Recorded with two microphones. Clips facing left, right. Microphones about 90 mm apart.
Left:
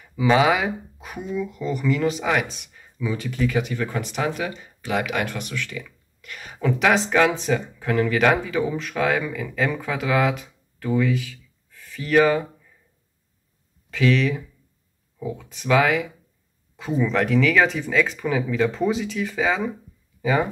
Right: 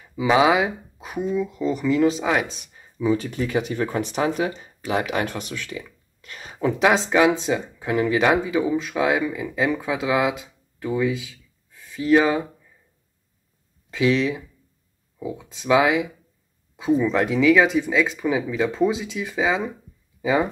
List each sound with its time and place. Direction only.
0.1 s speech: 20° right (ahead or behind)
13.8 s speech: 20° right (ahead or behind)
20.2 s a sound: 20° right (ahead or behind)